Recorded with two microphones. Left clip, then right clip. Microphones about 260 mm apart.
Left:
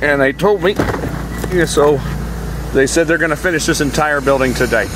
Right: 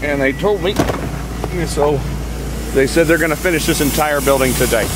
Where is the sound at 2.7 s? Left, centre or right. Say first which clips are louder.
Even; centre.